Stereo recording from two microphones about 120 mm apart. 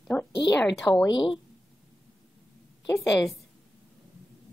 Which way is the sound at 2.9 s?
25° left (ahead or behind).